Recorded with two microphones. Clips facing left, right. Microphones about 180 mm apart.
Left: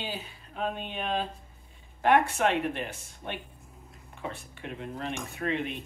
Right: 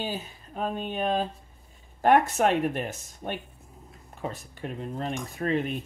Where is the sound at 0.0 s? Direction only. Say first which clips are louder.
Right 4 dB; 40° right (ahead or behind).